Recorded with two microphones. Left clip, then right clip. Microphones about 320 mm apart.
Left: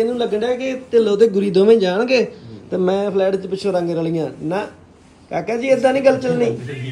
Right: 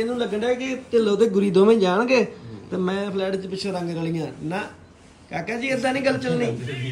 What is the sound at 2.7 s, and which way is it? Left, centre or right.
A man's voice, centre.